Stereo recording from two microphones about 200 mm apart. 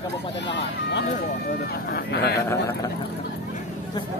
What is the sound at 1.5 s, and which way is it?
Speech, 50° left (ahead or behind).